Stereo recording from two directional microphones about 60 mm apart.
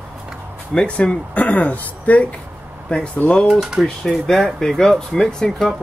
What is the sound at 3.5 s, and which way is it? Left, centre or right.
Speech, centre.